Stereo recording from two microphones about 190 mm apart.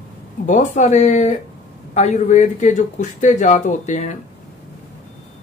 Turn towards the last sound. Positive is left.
turn(degrees=40)  # may be behind; listen again after turning